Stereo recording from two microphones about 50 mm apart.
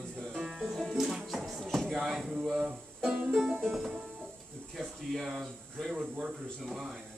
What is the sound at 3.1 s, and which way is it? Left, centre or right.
Music, centre.